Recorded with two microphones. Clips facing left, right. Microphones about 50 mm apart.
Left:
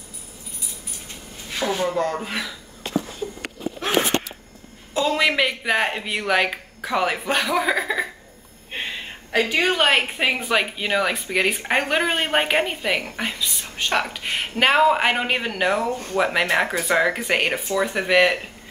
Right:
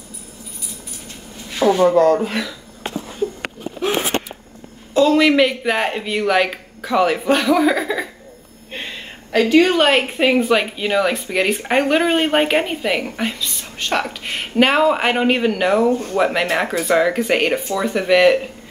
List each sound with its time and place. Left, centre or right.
1.6 s a sound: centre
2.2 s a woman's voice: centre
4.9 s a woman's voice: centre